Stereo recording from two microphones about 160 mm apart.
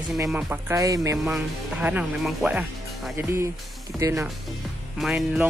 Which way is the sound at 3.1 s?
15° right (ahead or behind).